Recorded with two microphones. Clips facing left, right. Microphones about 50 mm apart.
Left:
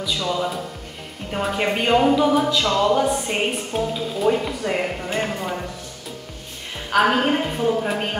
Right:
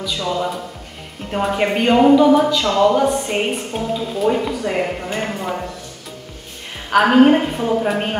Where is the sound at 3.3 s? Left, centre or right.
Centre.